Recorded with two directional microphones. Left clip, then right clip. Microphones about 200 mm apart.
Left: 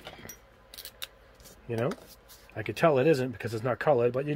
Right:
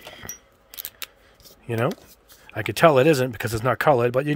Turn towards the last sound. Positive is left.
turn(degrees=-55)  # may be behind; listen again after turning